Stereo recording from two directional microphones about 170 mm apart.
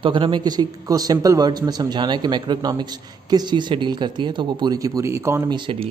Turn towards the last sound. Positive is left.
turn(degrees=-30)  # may be behind; listen again after turning